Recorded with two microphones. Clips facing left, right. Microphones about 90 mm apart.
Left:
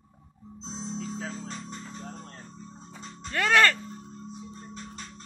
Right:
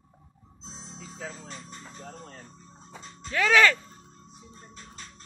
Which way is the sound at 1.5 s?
20° left (ahead or behind).